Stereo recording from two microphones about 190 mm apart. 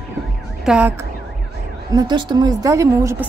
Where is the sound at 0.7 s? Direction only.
5° right (ahead or behind).